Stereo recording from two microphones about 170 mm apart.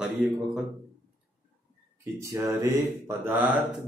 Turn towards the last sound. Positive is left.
turn(degrees=-10)  # may be behind; listen again after turning